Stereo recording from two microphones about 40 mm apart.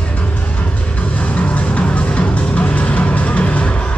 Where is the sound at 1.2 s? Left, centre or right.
Left.